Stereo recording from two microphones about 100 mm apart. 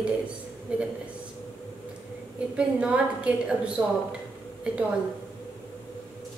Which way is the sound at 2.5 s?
10° right (ahead or behind).